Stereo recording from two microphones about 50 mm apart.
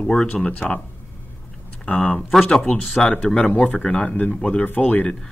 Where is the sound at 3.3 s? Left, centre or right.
Left.